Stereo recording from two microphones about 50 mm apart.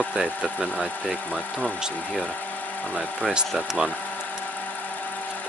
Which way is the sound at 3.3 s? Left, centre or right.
Centre.